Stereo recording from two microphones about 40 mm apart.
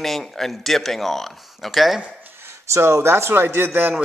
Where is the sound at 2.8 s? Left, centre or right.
Right.